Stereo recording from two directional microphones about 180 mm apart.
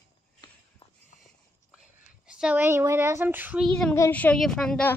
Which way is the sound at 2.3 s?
5° right (ahead or behind).